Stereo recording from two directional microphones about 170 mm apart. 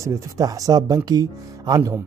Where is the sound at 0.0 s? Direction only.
20° right (ahead or behind).